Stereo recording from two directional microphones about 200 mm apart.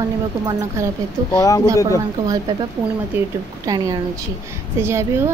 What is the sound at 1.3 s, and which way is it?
Speech, 15° left (ahead or behind).